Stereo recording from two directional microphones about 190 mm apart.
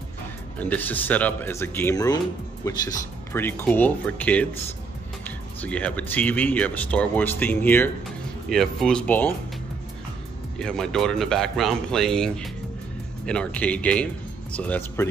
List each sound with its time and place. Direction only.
0.6 s speech: 10° left (ahead or behind)
5.6 s speech: 5° left (ahead or behind)
10.6 s speech: 5° left (ahead or behind)